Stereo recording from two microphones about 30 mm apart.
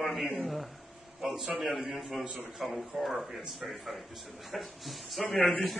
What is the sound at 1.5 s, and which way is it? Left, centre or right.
A man's voice, centre.